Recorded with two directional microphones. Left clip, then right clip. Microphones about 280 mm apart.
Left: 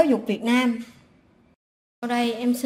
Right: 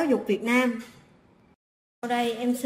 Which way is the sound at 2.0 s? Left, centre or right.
Left.